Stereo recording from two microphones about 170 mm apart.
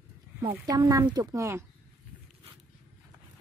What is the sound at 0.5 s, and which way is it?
Speech, 20° right (ahead or behind).